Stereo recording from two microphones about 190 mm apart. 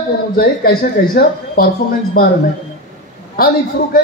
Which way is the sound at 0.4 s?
50° left (ahead or behind).